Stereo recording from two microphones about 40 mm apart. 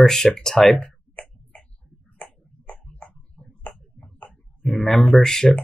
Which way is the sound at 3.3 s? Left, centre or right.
Centre.